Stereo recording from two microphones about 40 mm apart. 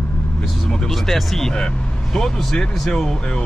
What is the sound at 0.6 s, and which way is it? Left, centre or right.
Speech, centre.